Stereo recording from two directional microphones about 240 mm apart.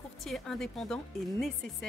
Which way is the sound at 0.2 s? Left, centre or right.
Centre.